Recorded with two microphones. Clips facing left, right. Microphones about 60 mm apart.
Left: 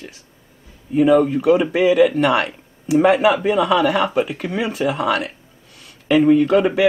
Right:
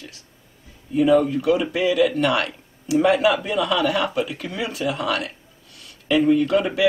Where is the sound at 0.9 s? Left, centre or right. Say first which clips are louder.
Left 3 dB; left.